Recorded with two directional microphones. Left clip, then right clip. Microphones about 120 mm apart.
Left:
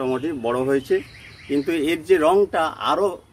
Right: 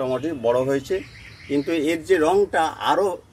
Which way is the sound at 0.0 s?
30° left (ahead or behind).